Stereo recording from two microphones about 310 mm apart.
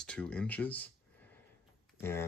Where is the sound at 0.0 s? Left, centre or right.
Centre.